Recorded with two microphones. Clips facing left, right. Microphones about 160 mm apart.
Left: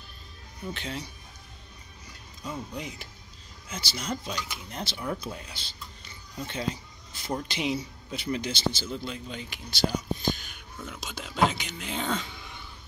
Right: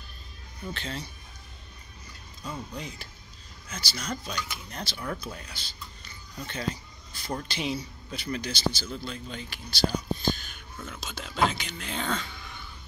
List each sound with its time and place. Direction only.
0.7 s speech: 15° left (ahead or behind)
2.7 s speech: 20° left (ahead or behind)